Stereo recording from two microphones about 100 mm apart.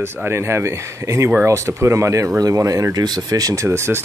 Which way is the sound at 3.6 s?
25° right (ahead or behind).